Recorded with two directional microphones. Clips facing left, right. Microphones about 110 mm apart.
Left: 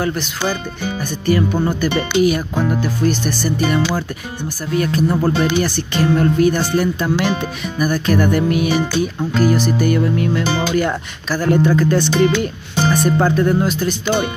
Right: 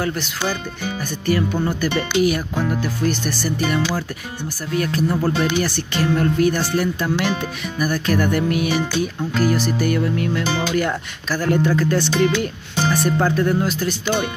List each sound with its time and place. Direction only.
0.0 s speech: 25° left (ahead or behind)